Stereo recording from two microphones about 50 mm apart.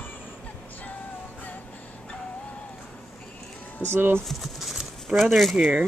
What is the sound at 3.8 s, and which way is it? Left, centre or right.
Speech, right.